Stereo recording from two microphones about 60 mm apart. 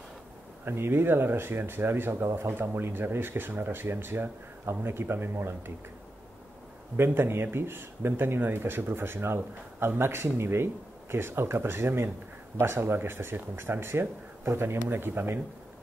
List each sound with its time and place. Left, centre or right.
0.7 s speech: right
7.0 s speech: right